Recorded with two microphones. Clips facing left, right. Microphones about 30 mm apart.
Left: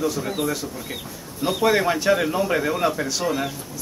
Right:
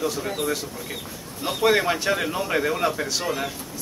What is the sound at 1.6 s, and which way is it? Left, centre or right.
A man's voice, centre.